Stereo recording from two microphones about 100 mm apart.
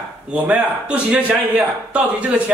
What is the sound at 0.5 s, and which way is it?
Speech, 15° right (ahead or behind).